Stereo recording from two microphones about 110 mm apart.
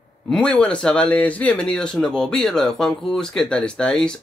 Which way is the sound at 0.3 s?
10° left (ahead or behind).